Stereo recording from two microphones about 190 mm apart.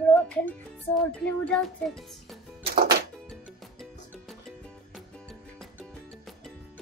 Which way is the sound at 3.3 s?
Centre (ahead or behind).